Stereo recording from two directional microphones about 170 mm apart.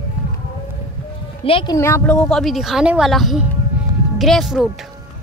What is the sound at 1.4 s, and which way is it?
Speech, 30° left (ahead or behind).